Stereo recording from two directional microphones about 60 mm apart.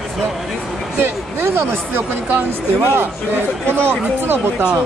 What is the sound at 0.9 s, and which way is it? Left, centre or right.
Speech, right.